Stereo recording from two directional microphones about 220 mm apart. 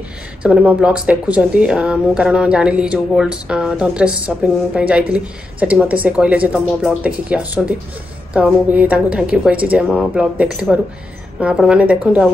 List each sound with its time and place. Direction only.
0.4 s speech: 5° right (ahead or behind)